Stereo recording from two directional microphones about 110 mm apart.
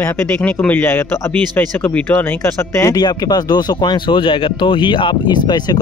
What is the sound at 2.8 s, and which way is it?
Speech, 35° left (ahead or behind).